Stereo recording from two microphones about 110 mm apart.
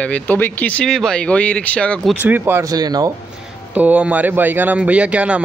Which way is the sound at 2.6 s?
35° right (ahead or behind).